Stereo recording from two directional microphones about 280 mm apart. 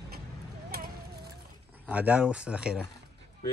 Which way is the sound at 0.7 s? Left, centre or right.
Right.